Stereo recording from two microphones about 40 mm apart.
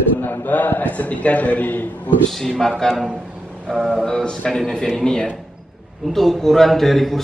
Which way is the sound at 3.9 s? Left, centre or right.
Centre.